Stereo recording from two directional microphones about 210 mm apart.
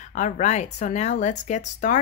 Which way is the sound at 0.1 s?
35° left (ahead or behind).